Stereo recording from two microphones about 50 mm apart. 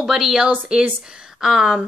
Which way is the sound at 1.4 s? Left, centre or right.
Centre.